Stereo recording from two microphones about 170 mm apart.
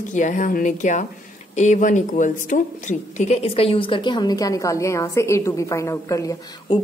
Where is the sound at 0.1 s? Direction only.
50° left (ahead or behind).